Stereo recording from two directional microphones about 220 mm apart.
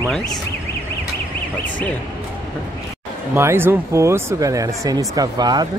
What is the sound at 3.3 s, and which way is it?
Speech, 10° right (ahead or behind).